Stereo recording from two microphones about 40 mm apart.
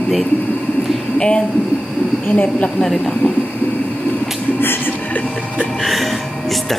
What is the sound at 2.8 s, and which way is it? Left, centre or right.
Speech, centre.